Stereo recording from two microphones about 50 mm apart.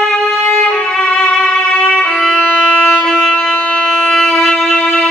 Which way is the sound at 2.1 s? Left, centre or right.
Centre.